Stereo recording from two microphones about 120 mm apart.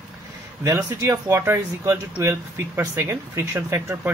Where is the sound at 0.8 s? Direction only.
25° right (ahead or behind).